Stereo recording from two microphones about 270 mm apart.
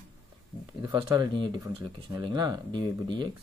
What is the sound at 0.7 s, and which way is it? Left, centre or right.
Speech, centre.